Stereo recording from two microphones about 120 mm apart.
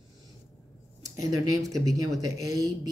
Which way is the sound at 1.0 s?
30° right (ahead or behind).